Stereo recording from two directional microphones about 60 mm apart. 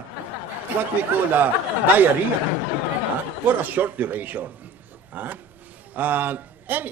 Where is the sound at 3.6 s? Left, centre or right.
Right.